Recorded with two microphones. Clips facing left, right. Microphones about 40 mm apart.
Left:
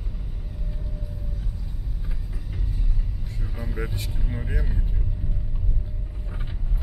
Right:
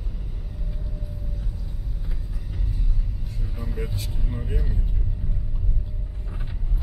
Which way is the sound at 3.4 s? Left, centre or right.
Centre.